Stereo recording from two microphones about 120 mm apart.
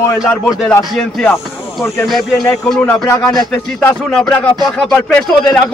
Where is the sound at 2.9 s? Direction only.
30° left (ahead or behind).